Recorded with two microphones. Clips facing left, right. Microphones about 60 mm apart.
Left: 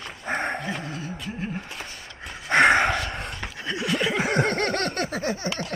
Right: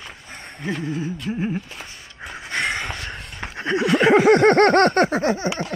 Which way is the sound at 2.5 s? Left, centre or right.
Left.